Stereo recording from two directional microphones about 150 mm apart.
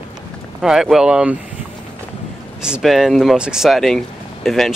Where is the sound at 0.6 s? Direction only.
Centre (ahead or behind).